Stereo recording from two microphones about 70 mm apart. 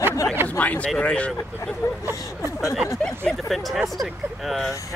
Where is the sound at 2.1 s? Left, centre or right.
Left.